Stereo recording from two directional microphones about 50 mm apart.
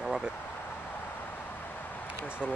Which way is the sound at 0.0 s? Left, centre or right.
Centre.